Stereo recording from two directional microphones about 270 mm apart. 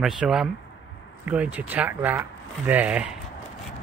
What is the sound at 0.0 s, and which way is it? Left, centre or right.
Speech, centre.